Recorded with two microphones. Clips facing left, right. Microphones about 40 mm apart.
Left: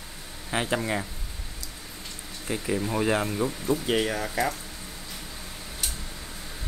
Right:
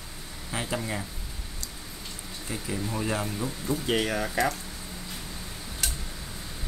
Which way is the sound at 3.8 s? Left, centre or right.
Centre.